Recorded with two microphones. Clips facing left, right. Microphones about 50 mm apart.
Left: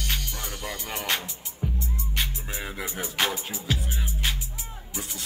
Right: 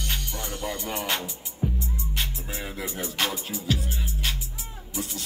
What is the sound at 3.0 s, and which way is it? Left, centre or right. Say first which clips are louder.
Music: left 2 dB; centre.